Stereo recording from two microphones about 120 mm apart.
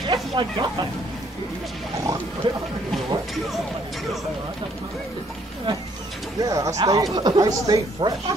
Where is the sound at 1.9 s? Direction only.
30° right (ahead or behind).